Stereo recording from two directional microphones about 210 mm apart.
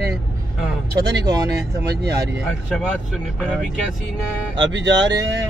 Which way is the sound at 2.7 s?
Centre (ahead or behind).